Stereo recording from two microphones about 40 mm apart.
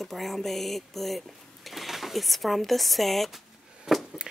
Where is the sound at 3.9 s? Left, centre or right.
Centre.